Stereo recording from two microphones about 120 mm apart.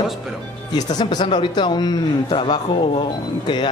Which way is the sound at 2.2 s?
55° left (ahead or behind).